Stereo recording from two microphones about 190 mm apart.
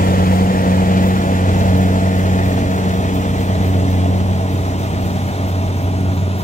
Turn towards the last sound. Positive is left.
turn(degrees=35)  # may be behind; listen again after turning